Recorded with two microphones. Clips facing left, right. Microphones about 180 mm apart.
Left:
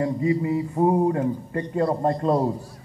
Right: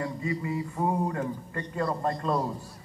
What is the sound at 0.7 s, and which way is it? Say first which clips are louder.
A man's voice: left 9 dB; 30° left (ahead or behind).